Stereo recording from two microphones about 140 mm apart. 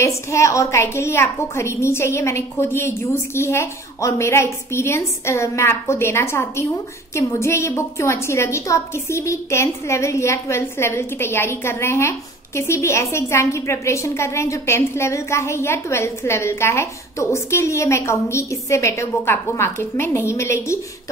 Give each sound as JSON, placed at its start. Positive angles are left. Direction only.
{"t": 0.0, "sound": "a woman's voice", "side_deg": 20}